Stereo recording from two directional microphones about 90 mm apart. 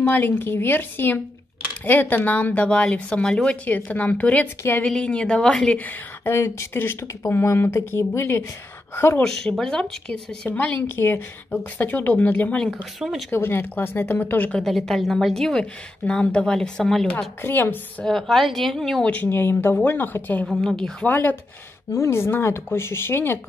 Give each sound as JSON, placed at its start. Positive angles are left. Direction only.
{"t": 0.1, "sound": "speech", "side_deg": 25}
{"t": 5.9, "sound": "speech", "side_deg": 25}
{"t": 9.2, "sound": "speech", "side_deg": 5}
{"t": 11.0, "sound": "speech", "side_deg": 25}
{"t": 13.3, "sound": "speech", "side_deg": 25}
{"t": 14.6, "sound": "a woman's voice", "side_deg": 5}
{"t": 17.4, "sound": "speech", "side_deg": 25}
{"t": 18.0, "sound": "a woman's voice", "side_deg": 0}
{"t": 19.0, "sound": "speech", "side_deg": 20}
{"t": 20.5, "sound": "speech", "side_deg": 5}
{"t": 21.1, "sound": "speech", "side_deg": 20}